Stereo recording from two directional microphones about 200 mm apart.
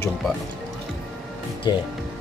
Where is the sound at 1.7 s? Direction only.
20° left (ahead or behind).